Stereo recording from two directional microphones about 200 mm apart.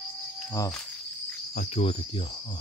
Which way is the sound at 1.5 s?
30° left (ahead or behind).